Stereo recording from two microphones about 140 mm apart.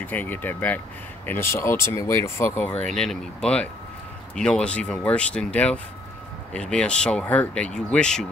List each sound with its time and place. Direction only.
0.0 s speech: 15° left (ahead or behind)
2.8 s speech: 5° left (ahead or behind)